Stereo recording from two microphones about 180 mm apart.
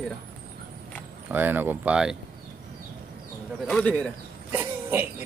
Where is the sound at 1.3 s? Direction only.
10° right (ahead or behind).